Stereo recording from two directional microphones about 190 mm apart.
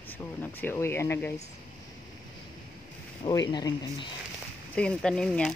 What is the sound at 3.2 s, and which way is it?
Speech, 20° left (ahead or behind).